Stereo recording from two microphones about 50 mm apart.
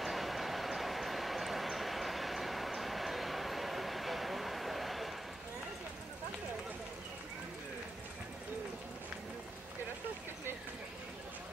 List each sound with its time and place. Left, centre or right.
0.0 s train: centre